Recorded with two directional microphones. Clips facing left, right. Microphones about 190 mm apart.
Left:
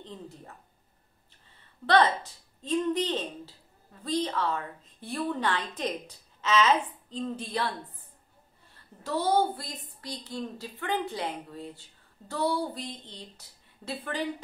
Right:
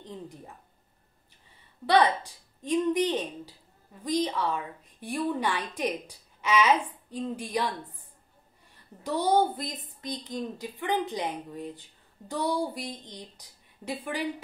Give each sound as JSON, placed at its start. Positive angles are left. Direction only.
{"t": 0.0, "sound": "a sound", "side_deg": -15}
{"t": 1.9, "sound": "a woman's voice", "side_deg": -15}
{"t": 8.7, "sound": "a woman's voice", "side_deg": -15}